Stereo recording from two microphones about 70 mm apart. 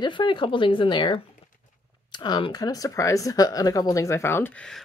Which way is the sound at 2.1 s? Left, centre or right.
Left.